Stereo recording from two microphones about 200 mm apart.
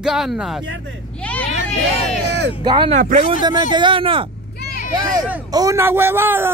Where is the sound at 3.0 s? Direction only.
40° right (ahead or behind).